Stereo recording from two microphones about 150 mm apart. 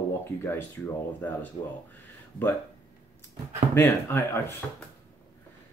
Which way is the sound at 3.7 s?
15° left (ahead or behind).